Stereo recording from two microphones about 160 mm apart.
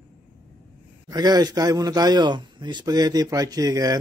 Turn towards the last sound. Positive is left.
turn(degrees=-20)  # may be behind; listen again after turning